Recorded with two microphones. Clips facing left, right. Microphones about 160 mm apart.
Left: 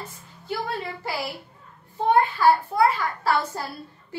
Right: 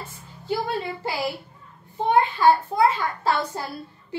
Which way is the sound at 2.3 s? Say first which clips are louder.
Right 1 dB; 20° right (ahead or behind).